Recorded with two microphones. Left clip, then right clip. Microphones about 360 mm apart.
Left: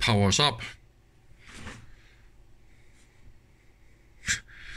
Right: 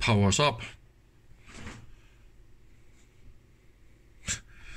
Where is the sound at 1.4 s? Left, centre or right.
Centre.